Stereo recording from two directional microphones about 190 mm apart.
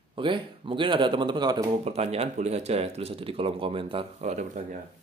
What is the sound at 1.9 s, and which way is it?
Speech, 35° right (ahead or behind).